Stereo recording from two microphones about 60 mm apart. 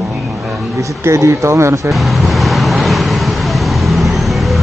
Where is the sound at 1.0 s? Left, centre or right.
Right.